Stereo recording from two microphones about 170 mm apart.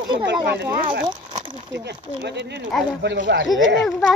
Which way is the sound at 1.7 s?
85° right.